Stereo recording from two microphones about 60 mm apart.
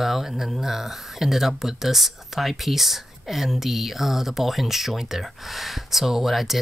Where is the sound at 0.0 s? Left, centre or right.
Centre.